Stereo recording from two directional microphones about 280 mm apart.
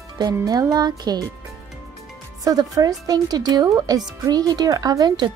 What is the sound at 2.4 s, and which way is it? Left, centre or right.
Speech, centre.